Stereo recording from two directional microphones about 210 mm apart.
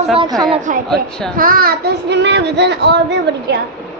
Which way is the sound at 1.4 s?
45° right (ahead or behind).